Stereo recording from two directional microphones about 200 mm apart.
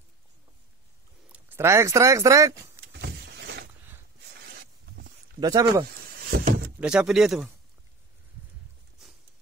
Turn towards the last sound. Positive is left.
turn(degrees=0)  # may be behind; listen again after turning